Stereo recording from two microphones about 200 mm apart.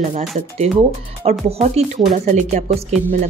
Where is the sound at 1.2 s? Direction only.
30° right (ahead or behind).